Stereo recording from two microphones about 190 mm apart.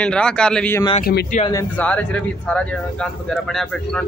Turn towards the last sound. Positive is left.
turn(degrees=5)  # may be behind; listen again after turning